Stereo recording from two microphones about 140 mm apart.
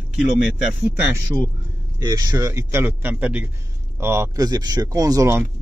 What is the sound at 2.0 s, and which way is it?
Speech, 25° right (ahead or behind).